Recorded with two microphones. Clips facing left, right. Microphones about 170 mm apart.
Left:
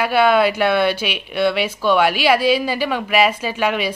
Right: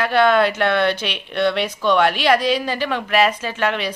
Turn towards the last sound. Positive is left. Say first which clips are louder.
# left 2 dB
turn(degrees=10)  # may be behind; listen again after turning